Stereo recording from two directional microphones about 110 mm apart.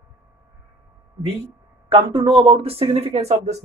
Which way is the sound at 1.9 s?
55° right (ahead or behind).